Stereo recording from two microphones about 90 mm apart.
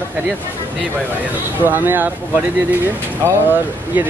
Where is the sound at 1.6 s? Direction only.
20° right (ahead or behind).